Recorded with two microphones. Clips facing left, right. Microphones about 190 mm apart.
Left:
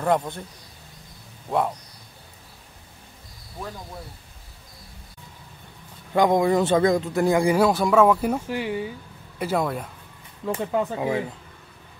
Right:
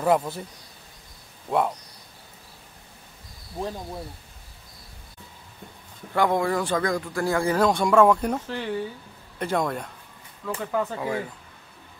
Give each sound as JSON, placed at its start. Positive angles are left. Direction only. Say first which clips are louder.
{"t": 0.0, "sound": "speech", "louder": "right 1 dB", "side_deg": -5}
{"t": 3.5, "sound": "speech", "louder": "right 5 dB", "side_deg": -30}
{"t": 6.1, "sound": "a man's voice", "louder": "left 4 dB", "side_deg": 15}
{"t": 10.4, "sound": "speech", "louder": "left 3 dB", "side_deg": 25}